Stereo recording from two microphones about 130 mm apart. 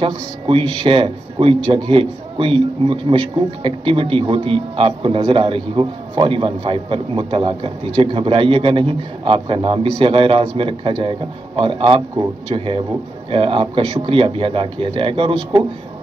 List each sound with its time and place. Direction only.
0.0 s a man's voice: 45° right (ahead or behind)